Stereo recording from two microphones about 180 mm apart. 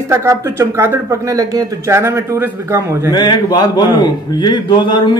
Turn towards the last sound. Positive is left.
turn(degrees=25)  # may be behind; listen again after turning